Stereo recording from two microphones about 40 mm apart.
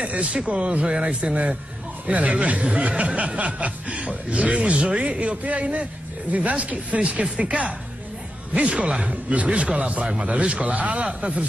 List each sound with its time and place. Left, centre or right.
0.0 s speech: right
11.1 s speech: right